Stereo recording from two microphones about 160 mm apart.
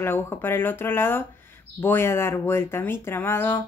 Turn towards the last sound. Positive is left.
turn(degrees=15)  # may be behind; listen again after turning